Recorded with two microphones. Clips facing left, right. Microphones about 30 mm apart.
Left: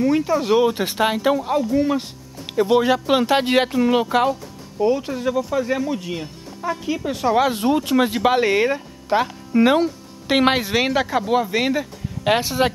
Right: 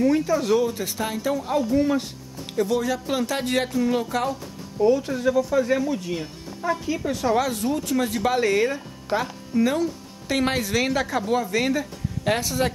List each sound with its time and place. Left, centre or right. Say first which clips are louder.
0.0 s speech: left 2 dB; left
0.6 s speech: left 6 dB; left
1.3 s speech: left 3 dB; centre
2.5 s speech: left 6 dB; left
6.1 s speech: left 1 dB; centre
7.1 s speech: left 4 dB; left
7.4 s speech: left 6 dB; left
9.5 s a woman's voice: left 6 dB; left
10.9 s speech: left 4 dB; centre